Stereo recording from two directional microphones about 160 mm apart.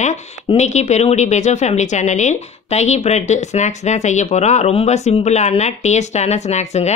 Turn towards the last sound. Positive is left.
turn(degrees=45)  # may be behind; listen again after turning